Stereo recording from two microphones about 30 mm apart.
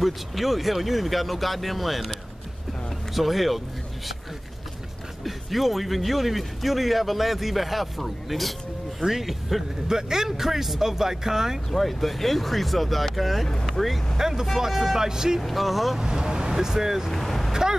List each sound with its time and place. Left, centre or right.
0.0 s speech: centre
3.2 s speech: centre
5.2 s speech: centre
9.0 s speech: centre
9.8 s speech: centre
11.7 s speech: centre
14.1 s speech: centre
14.7 s speech: centre
15.0 s speech: centre
15.4 s speech: centre
16.0 s speech: right
17.1 s vehicle: centre
17.5 s vehicle: centre